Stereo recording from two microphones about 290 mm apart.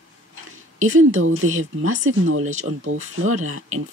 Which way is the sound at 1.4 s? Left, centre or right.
Right.